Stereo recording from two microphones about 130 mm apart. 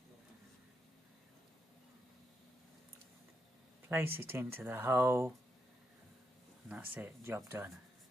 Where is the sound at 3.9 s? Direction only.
15° right (ahead or behind).